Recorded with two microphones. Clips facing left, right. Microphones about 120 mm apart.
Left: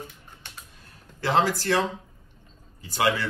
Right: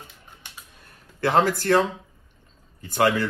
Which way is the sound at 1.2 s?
50° right (ahead or behind).